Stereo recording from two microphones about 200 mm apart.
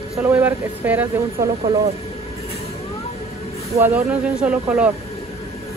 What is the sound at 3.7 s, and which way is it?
Speech, 10° right (ahead or behind).